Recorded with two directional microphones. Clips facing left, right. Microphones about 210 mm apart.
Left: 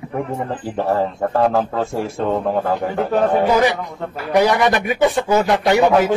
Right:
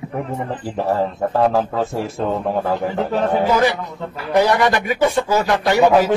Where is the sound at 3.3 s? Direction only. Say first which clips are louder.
Right 1 dB; 15° left (ahead or behind).